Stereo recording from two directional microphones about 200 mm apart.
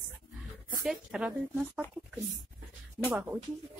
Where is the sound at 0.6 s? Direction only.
5° right (ahead or behind).